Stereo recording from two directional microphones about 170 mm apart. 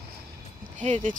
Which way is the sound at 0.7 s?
45° right (ahead or behind).